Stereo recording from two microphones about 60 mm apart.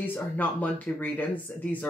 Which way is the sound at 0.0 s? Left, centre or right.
Left.